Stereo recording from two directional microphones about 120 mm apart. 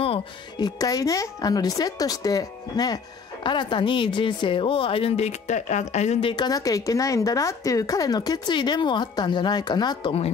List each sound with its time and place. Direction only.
0.6 s a woman's voice: 35° left (ahead or behind); by 6.1 s 70° left (ahead or behind)
6.2 s a woman's voice: 35° left (ahead or behind)